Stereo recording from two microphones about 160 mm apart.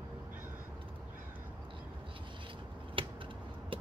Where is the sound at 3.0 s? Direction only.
35° right (ahead or behind).